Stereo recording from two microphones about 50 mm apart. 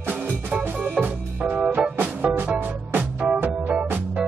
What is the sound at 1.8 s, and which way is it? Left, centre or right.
Music, right.